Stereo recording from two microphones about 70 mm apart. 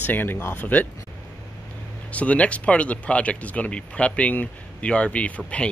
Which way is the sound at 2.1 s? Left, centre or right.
Centre.